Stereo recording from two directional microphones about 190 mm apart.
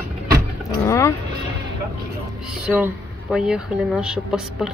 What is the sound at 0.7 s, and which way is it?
Speech, 15° left (ahead or behind).